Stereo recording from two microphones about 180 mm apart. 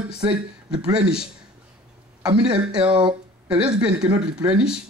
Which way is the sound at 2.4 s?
5° right (ahead or behind).